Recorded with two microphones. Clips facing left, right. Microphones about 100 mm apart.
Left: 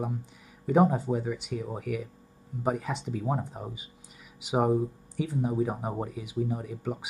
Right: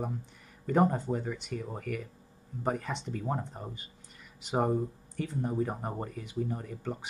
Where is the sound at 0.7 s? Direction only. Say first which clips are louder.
Left 3 dB; 5° left (ahead or behind).